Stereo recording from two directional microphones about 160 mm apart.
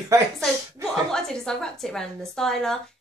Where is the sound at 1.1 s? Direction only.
5° left (ahead or behind).